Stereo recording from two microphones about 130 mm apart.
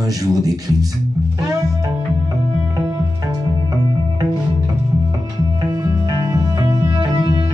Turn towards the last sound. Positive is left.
turn(degrees=-30)  # may be behind; listen again after turning